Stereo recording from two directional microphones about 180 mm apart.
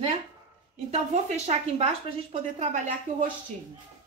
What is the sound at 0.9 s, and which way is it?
Speech, 40° right (ahead or behind).